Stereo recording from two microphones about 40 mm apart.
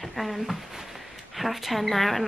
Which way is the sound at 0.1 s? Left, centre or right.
Centre.